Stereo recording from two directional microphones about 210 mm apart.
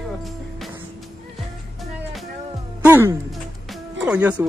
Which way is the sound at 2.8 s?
10° right (ahead or behind).